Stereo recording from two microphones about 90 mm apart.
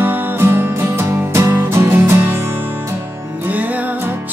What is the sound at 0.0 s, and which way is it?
Music, 20° right (ahead or behind).